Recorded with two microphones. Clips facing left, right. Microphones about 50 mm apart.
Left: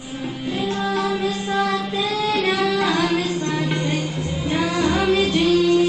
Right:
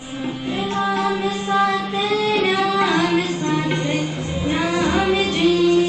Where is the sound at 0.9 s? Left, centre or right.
Centre.